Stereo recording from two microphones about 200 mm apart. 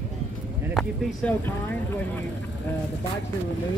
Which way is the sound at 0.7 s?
5° left (ahead or behind).